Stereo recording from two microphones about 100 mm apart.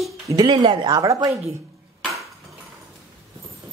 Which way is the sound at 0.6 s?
60° right (ahead or behind).